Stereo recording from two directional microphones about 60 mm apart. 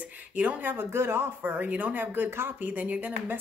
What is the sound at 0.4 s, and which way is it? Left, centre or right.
Speech, right.